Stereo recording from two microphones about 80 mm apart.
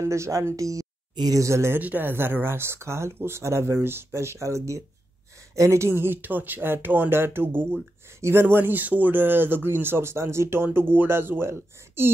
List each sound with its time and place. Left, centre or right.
0.0 s speech: right
1.1 s speech: right
1.4 s speech: right
1.8 s speech: right